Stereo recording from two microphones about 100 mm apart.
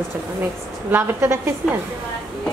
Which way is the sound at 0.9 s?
25° right (ahead or behind).